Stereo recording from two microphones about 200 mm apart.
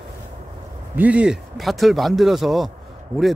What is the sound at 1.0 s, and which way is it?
A man's voice, 5° right (ahead or behind).